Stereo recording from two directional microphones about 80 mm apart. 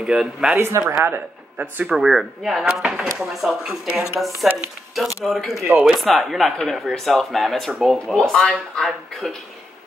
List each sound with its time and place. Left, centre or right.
0.0 s speech: centre
0.7 s speech: right
1.9 s speech: centre
5.7 s speech: centre
5.9 s speech: centre